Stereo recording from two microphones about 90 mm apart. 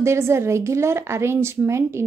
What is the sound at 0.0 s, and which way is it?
A woman's voice, 30° right (ahead or behind).